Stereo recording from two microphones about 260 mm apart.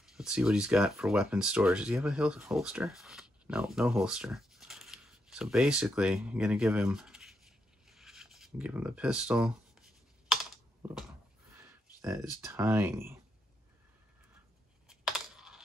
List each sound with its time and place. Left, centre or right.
0.0 s speech: centre
11.5 s a sound: centre
12.4 s speech: centre
14.9 s computer keyboard: centre